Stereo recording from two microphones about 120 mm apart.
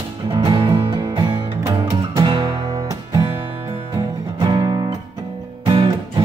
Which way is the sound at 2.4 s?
30° right (ahead or behind).